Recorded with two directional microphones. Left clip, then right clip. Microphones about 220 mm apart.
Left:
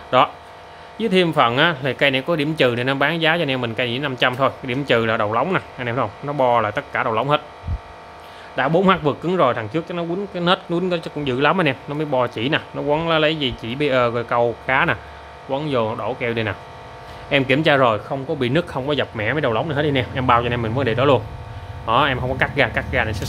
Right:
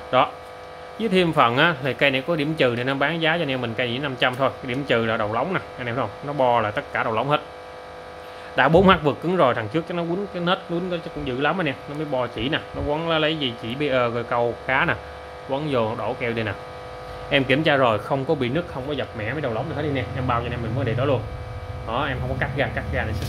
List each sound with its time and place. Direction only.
0.1 s speech: 15° left (ahead or behind)
8.5 s speech: centre (ahead or behind); by 23.0 s 25° left (ahead or behind)